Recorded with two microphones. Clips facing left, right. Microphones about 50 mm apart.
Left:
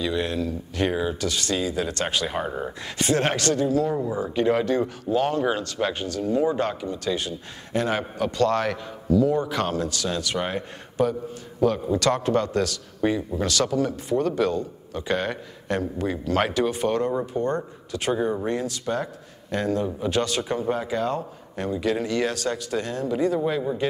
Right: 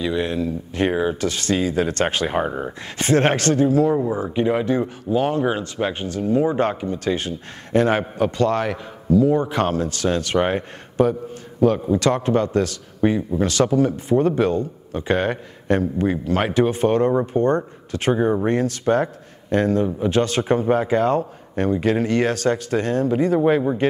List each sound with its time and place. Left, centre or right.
0.0 s speech: right
8.2 s speech: right